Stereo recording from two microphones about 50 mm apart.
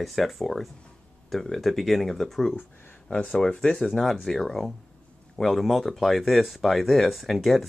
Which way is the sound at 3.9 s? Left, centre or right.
Centre.